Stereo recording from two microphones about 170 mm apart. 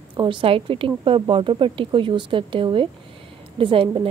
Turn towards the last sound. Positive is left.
turn(degrees=-30)  # may be behind; listen again after turning